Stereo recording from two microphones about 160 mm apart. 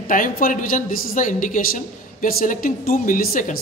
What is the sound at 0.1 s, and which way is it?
A woman's voice, 55° left (ahead or behind).